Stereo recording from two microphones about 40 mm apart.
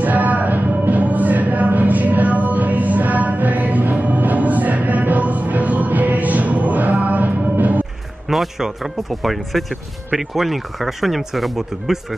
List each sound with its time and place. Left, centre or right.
0.0 s music: right
8.3 s speech: centre
9.1 s speech: centre